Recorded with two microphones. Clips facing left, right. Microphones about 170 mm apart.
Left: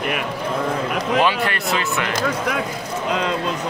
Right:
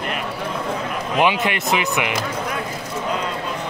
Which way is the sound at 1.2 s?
20° right (ahead or behind).